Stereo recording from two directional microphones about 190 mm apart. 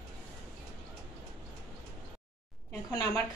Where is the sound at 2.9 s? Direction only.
20° left (ahead or behind).